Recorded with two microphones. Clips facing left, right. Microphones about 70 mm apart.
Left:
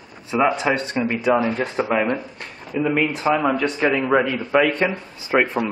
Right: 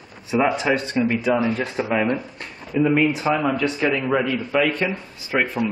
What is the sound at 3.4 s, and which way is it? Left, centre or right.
Speech, centre.